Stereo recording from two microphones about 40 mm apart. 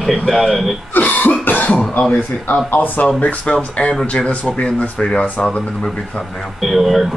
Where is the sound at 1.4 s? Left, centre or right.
Left.